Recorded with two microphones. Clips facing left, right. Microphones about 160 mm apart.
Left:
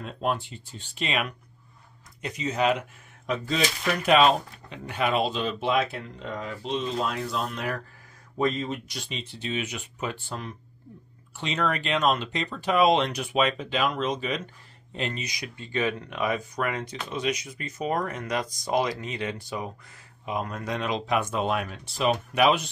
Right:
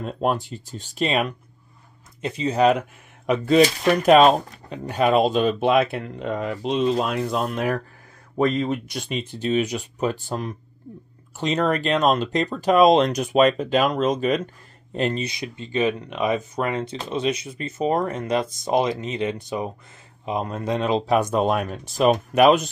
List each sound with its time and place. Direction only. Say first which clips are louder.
0.0 s speech: right 5 dB; 45° right (ahead or behind)
3.3 s speech: right 11 dB; 60° right (ahead or behind)
3.6 s speech: right 8 dB; 40° right (ahead or behind)
15.2 s speech: right 6 dB; 25° right (ahead or behind); by 22.7 s 45° right (ahead or behind)